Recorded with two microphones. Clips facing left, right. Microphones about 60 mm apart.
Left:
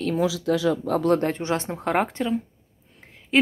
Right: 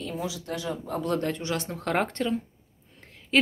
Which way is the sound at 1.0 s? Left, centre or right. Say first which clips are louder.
Left 4 dB; left.